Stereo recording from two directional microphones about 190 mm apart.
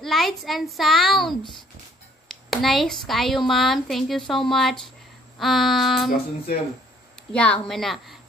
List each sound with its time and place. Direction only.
0.0 s a woman's voice: centre (ahead or behind)
7.3 s a woman's voice: 5° left (ahead or behind)